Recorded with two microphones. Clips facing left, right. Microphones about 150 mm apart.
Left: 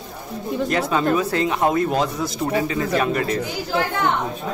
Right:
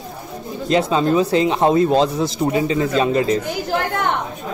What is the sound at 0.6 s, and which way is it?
Speech, 20° right (ahead or behind).